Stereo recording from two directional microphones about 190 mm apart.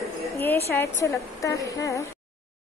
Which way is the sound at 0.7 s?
15° left (ahead or behind).